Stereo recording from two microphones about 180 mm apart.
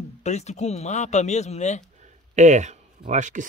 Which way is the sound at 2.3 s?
40° right (ahead or behind).